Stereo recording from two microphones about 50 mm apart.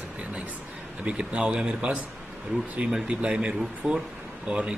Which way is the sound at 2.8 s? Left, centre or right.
Right.